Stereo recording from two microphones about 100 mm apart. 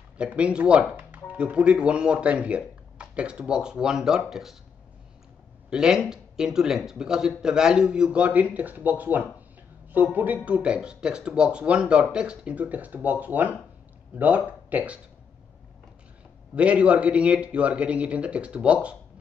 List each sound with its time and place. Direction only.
0.2 s speech: 10° right (ahead or behind)
5.7 s speech: 5° right (ahead or behind)
16.5 s speech: 10° right (ahead or behind)